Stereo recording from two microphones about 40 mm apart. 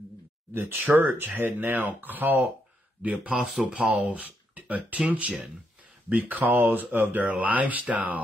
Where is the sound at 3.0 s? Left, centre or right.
Right.